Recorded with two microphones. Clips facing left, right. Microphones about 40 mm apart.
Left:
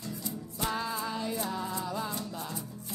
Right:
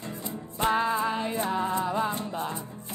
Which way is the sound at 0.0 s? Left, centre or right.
Right.